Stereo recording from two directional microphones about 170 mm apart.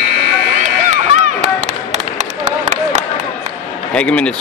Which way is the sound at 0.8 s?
45° right (ahead or behind).